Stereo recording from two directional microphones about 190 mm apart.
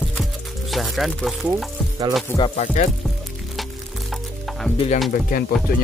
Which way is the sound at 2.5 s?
40° left (ahead or behind).